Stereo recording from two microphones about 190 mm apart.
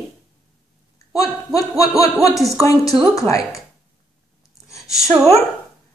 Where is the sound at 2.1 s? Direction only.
Centre (ahead or behind).